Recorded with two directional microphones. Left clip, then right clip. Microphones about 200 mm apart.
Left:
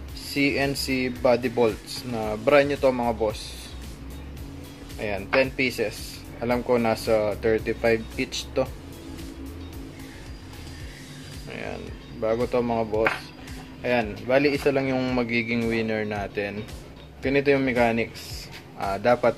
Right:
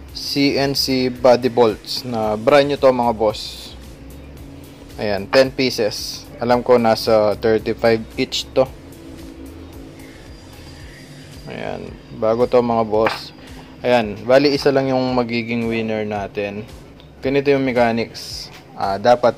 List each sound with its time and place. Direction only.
0.3 s speech: 25° right (ahead or behind)
4.9 s speech: 30° right (ahead or behind)
11.4 s a man's voice: 25° right (ahead or behind)